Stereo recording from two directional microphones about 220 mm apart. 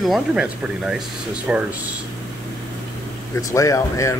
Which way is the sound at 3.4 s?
15° left (ahead or behind).